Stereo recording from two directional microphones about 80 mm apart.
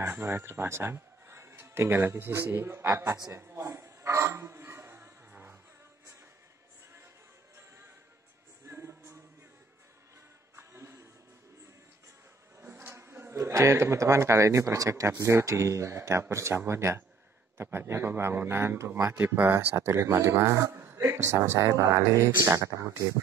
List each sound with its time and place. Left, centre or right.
0.0 s a man's voice: right
3.3 s a sound: right
5.3 s music: right
8.6 s music: right
10.5 s music: right
12.6 s a man's voice: right
19.1 s a man's voice: right